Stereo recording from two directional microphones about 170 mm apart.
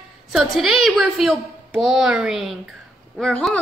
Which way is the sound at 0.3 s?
Centre (ahead or behind).